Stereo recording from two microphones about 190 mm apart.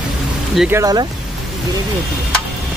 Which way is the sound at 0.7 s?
20° right (ahead or behind).